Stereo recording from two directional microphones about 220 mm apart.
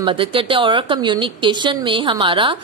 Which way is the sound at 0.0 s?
25° right (ahead or behind).